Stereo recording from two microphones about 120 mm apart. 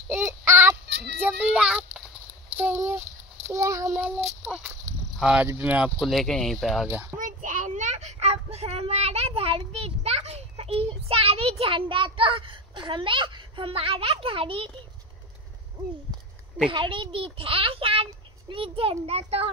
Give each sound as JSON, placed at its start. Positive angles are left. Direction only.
{"t": 0.3, "sound": "child singing", "side_deg": -20}
{"t": 1.2, "sound": "a child's voice", "side_deg": -10}
{"t": 2.5, "sound": "a sound", "side_deg": -15}
{"t": 3.4, "sound": "child singing", "side_deg": -25}
{"t": 3.9, "sound": "a child's voice", "side_deg": -15}
{"t": 5.9, "sound": "speech", "side_deg": 0}
{"t": 6.9, "sound": "a child's voice", "side_deg": -20}
{"t": 7.2, "sound": "child singing", "side_deg": -90}
{"t": 16.7, "sound": "a child's voice", "side_deg": -45}